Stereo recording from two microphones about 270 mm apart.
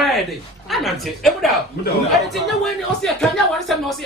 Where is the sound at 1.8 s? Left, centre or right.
Left.